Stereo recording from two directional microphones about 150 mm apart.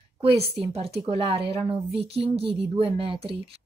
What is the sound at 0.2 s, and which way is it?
A woman's voice, 40° right (ahead or behind).